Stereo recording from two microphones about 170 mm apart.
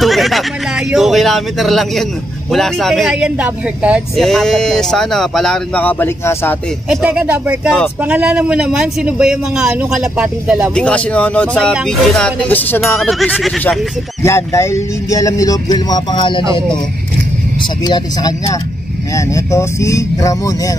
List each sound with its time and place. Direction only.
0.0 s speech: centre (ahead or behind)
4.2 s speech: 5° left (ahead or behind)
6.9 s speech: 5° right (ahead or behind)
10.7 s speech: 5° left (ahead or behind)
13.2 s speech: centre (ahead or behind)
14.2 s speech: 15° left (ahead or behind)
17.8 s speech: 25° left (ahead or behind)